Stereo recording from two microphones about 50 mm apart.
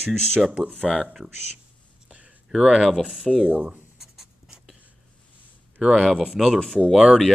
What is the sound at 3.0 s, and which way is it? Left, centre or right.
Speech, centre.